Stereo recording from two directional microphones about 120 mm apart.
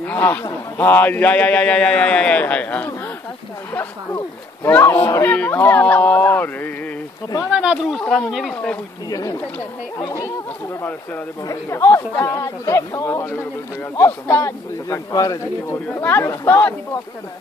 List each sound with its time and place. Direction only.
0.0 s speech: 15° left (ahead or behind)
4.6 s speech: 15° left (ahead or behind)
7.5 s speech: 5° right (ahead or behind)
9.1 s speech: 30° left (ahead or behind)
11.4 s speech: 25° left (ahead or behind)
15.9 s speech: 15° left (ahead or behind)